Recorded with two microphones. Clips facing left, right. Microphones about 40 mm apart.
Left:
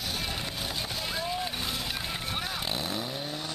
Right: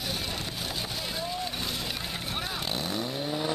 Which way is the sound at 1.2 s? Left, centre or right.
Centre.